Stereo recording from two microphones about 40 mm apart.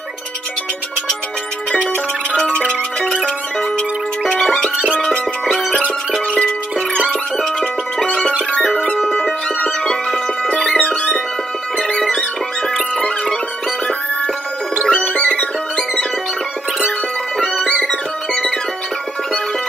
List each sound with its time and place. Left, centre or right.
2.3 s music: centre
4.3 s music: centre
5.4 s music: centre
7.4 s music: left
10.8 s music: left
11.9 s music: centre
12.9 s music: left
14.9 s music: left
17.6 s music: centre